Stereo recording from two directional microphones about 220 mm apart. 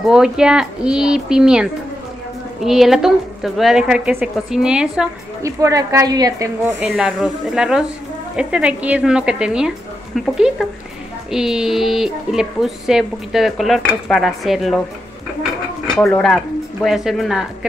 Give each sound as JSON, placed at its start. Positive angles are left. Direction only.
{"t": 0.1, "sound": "speech", "side_deg": -5}
{"t": 5.4, "sound": "speech", "side_deg": -15}
{"t": 6.8, "sound": "speech", "side_deg": -5}
{"t": 16.0, "sound": "speech", "side_deg": 0}